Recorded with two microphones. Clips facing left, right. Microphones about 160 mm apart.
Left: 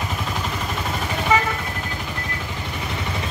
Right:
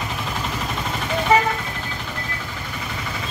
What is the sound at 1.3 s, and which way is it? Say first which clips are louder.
Vehicle: right 3 dB; 35° right (ahead or behind).